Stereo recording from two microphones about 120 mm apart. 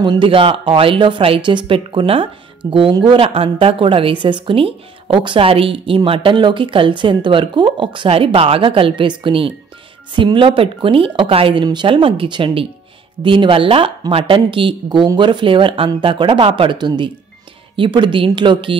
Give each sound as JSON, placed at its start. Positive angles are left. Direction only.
{"t": 0.0, "sound": "speech", "side_deg": -45}